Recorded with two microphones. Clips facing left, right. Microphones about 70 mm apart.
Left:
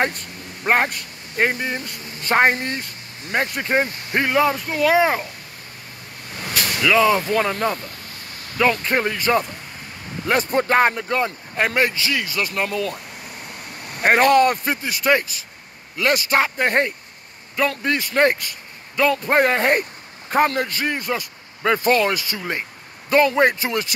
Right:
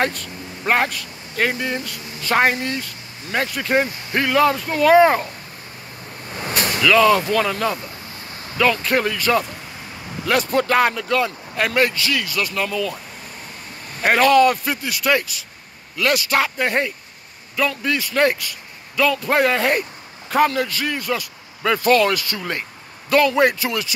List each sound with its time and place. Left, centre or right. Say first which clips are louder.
0.7 s speech: even; left
4.5 s speech: right 4 dB; centre
6.3 s vehicle: right 3 dB; right
6.8 s speech: right 2 dB; left
7.3 s speech: even; left
8.8 s speech: right 1 dB; left
14.0 s a man's voice: right 1 dB; left